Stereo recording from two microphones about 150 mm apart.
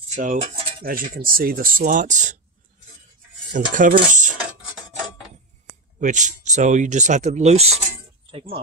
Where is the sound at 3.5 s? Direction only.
60° right (ahead or behind).